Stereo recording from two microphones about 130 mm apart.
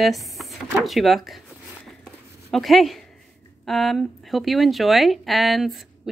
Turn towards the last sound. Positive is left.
turn(degrees=0)  # may be behind; listen again after turning